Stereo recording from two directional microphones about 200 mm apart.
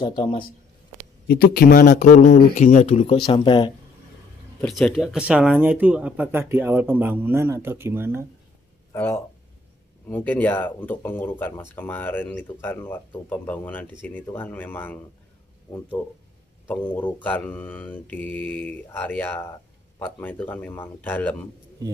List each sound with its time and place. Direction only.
0.0 s speech: 25° left (ahead or behind)
1.2 s speech: 50° left (ahead or behind); by 3.7 s 25° left (ahead or behind)
4.6 s speech: 5° left (ahead or behind)
8.9 s speech: 10° left (ahead or behind)
10.0 s mantra: 10° left (ahead or behind)
16.6 s mantra: 10° left (ahead or behind)